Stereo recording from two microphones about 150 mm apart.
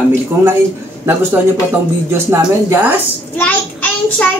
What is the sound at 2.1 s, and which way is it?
Speech, 15° right (ahead or behind).